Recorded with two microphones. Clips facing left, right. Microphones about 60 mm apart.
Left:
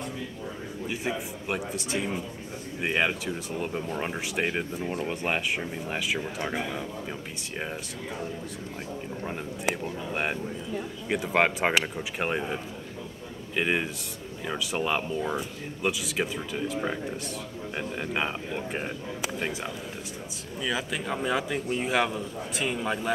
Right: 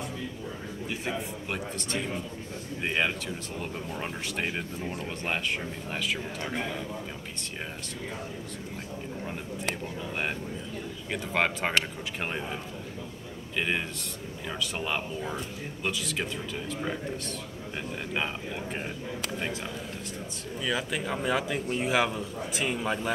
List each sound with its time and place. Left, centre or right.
0.8 s speech: centre
9.2 s speech: centre
13.6 s a man's voice: centre